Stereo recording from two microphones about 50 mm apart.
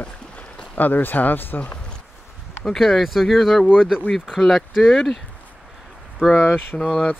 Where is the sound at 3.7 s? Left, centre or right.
Centre.